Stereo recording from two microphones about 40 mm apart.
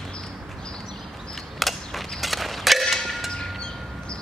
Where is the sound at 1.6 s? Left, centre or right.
Centre.